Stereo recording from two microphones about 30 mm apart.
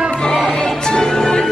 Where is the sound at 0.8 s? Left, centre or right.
Left.